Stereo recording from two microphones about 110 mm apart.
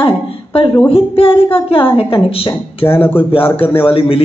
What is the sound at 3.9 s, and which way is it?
Speech, 55° left (ahead or behind).